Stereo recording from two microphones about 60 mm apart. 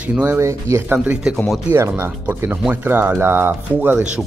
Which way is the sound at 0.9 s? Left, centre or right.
Right.